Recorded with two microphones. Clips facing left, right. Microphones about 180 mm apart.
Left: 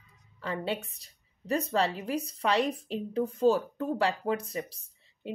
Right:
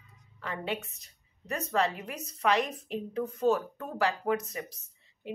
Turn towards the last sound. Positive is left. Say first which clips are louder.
# left 3 dB
turn(degrees=30)  # may be behind; listen again after turning